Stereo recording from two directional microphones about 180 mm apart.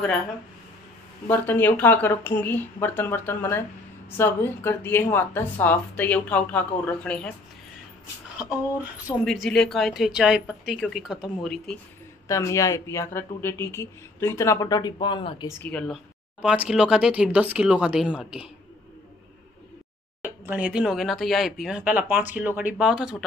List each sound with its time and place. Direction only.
1.2 s speech: 10° left (ahead or behind)
9.0 s speech: centre (ahead or behind)
12.3 s speech: 15° left (ahead or behind)
15.6 s speech: 5° left (ahead or behind)
16.4 s speech: 5° right (ahead or behind)
20.2 s speech: 10° right (ahead or behind)